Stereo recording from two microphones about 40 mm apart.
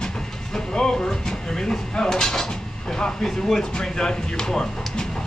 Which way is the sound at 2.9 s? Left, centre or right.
Centre.